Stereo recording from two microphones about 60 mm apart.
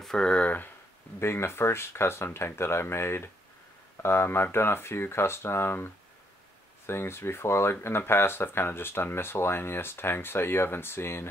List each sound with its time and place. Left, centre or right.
0.0 s speech: centre
1.2 s speech: left
6.9 s speech: left